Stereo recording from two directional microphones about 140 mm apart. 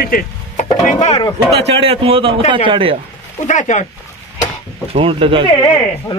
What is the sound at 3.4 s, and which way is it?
Speech, 60° left (ahead or behind).